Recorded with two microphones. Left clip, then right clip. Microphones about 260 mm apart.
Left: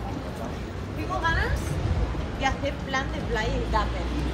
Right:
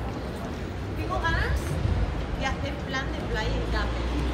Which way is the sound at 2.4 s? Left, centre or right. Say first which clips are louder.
Left 5 dB; left.